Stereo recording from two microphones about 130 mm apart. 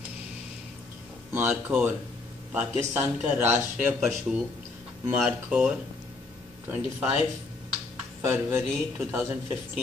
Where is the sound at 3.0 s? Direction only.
15° right (ahead or behind).